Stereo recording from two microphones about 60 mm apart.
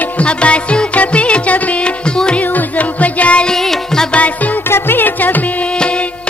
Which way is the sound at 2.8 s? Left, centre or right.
Left.